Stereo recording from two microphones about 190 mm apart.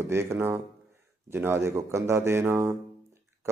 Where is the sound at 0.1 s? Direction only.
15° right (ahead or behind).